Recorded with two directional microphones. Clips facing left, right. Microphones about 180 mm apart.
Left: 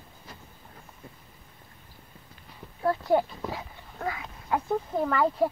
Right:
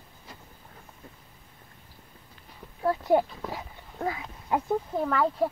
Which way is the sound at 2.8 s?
15° right (ahead or behind).